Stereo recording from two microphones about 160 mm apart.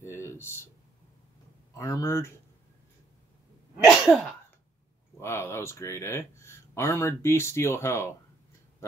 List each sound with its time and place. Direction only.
0.0 s a sound: 15° left (ahead or behind)
1.8 s speech: 20° left (ahead or behind)
3.8 s sneeze: centre (ahead or behind)
5.2 s speech: 15° left (ahead or behind)